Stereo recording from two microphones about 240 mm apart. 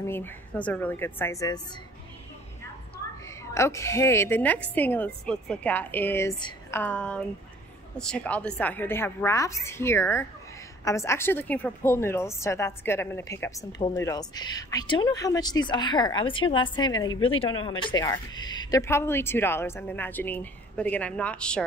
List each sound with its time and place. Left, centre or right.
0.0 s speech: centre
3.5 s speech: centre